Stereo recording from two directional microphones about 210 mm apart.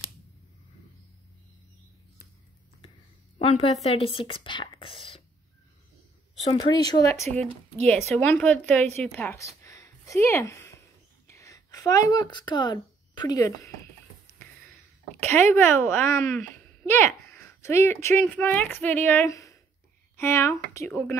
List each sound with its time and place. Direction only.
3.3 s speech: 30° left (ahead or behind)
6.5 s a woman's voice: 20° left (ahead or behind)
15.2 s a woman's voice: 10° left (ahead or behind)